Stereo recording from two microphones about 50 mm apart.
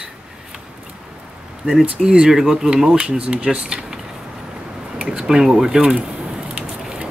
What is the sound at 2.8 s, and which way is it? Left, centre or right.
Speech, right.